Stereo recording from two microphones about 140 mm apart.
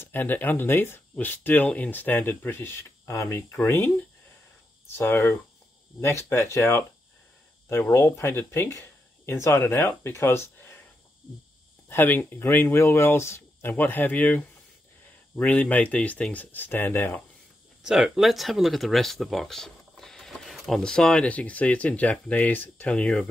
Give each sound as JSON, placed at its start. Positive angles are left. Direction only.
{"t": 0.0, "sound": "speech", "side_deg": 15}
{"t": 11.9, "sound": "speech", "side_deg": 15}
{"t": 17.8, "sound": "speech", "side_deg": -5}